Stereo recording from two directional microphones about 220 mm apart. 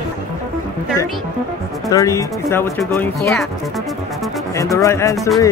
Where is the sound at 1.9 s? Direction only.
15° left (ahead or behind).